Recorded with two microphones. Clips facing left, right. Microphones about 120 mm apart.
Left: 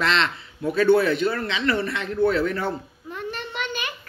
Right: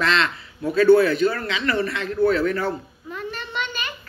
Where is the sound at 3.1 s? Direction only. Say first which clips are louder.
Right 1 dB; 55° left (ahead or behind).